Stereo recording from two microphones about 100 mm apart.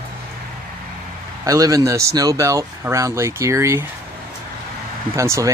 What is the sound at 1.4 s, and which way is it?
Speech, 35° right (ahead or behind).